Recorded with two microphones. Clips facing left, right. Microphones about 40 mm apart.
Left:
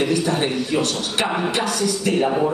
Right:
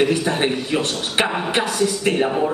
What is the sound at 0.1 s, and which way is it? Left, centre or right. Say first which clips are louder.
A man's voice: right 1 dB; right.